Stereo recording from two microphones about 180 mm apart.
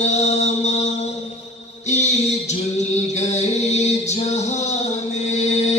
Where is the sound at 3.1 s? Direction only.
40° left (ahead or behind).